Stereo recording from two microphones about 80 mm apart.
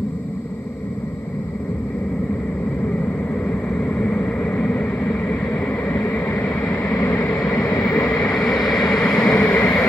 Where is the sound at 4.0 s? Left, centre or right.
Left.